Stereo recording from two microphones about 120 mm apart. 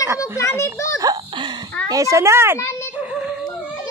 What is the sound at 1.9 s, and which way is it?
Speech, 25° right (ahead or behind).